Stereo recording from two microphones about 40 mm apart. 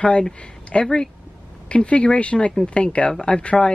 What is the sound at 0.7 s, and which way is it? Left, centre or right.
Speech, left.